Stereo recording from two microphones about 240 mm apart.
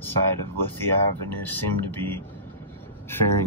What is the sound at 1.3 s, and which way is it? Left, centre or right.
Vehicle, centre.